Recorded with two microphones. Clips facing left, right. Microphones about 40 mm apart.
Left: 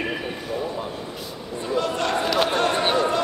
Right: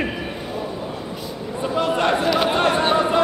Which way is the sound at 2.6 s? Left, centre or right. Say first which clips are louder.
Right 3 dB; centre.